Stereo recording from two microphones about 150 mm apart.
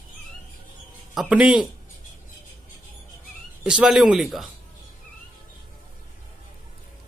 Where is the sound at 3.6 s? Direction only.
5° right (ahead or behind).